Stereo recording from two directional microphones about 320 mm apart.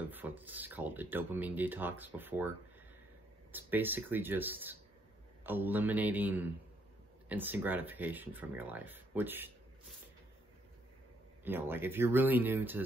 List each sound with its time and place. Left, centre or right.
0.1 s speech: centre
3.5 s speech: centre
11.4 s speech: centre